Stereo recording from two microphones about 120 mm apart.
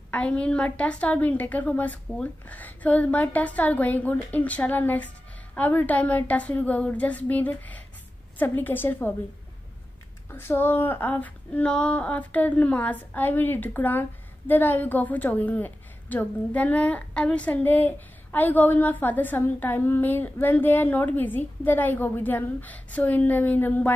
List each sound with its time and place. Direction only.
0.1 s a woman's voice: 10° left (ahead or behind)
10.3 s a woman's voice: 15° left (ahead or behind)